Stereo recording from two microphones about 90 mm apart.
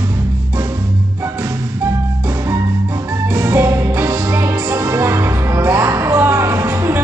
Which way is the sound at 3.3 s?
30° right (ahead or behind).